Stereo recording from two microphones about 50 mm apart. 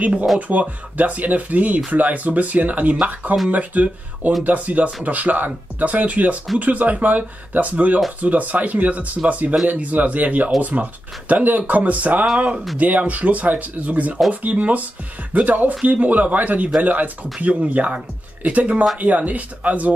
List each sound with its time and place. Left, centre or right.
0.0 s speech: right